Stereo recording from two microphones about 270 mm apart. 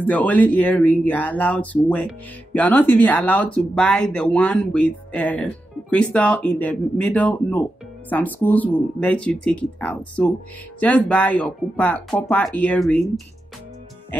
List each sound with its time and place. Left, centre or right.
0.0 s speech: centre